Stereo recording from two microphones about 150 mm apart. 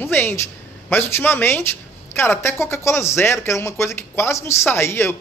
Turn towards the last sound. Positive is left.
turn(degrees=15)  # may be behind; listen again after turning